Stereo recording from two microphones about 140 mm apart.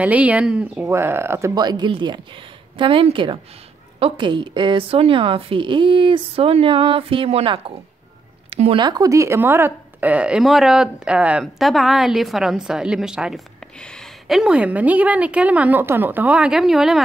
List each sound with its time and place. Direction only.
0.0 s a woman's voice: 10° right (ahead or behind)
0.8 s a woman's voice: 15° right (ahead or behind)
1.5 s a woman's voice: 30° right (ahead or behind); by 13.4 s 5° right (ahead or behind)
13.7 s a woman's voice: 5° left (ahead or behind)